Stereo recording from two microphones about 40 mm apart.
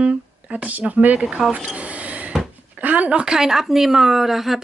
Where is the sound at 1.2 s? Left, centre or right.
Right.